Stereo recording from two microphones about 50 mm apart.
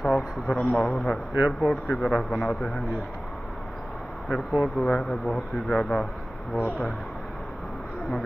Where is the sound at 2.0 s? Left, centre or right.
Centre.